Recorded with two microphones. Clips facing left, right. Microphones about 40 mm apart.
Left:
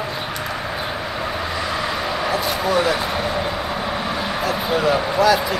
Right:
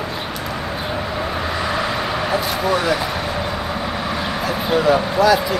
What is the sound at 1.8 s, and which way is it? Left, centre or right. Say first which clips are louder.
Speech: right 1 dB; centre.